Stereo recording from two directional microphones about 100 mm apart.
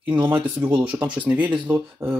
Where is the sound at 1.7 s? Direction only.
25° right (ahead or behind).